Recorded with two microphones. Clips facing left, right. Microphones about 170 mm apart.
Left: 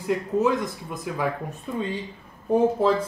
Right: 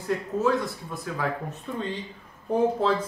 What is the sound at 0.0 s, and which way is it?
Speech, 15° left (ahead or behind).